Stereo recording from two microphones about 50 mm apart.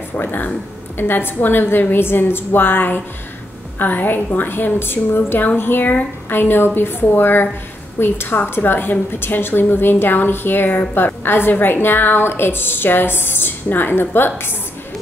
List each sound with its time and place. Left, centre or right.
0.1 s a woman's voice: left